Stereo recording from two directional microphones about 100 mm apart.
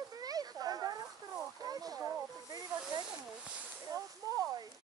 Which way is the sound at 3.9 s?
35° right (ahead or behind).